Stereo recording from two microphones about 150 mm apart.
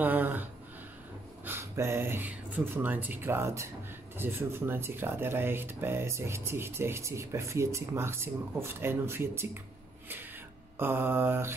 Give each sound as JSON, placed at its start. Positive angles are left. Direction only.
{"t": 0.0, "sound": "speech", "side_deg": -10}
{"t": 10.8, "sound": "speech", "side_deg": -15}